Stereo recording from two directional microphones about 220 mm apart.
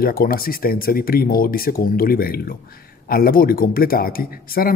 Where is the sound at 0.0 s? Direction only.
40° left (ahead or behind).